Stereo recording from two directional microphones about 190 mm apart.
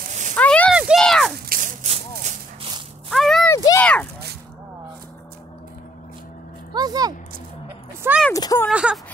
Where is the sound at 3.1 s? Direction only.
Centre (ahead or behind).